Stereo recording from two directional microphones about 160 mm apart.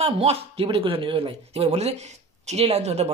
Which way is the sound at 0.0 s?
40° right (ahead or behind).